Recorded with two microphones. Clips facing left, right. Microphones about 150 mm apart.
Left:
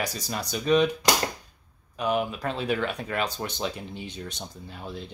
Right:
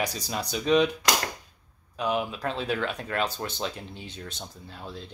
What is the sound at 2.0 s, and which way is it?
Speech, centre (ahead or behind).